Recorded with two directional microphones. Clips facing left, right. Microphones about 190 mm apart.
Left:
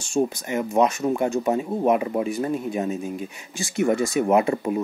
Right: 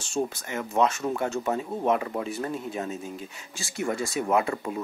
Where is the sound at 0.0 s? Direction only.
15° left (ahead or behind).